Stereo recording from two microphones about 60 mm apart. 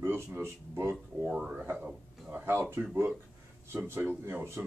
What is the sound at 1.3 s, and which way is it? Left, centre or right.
Speech, centre.